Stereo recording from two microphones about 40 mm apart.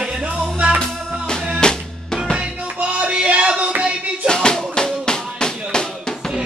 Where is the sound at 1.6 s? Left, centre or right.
Centre.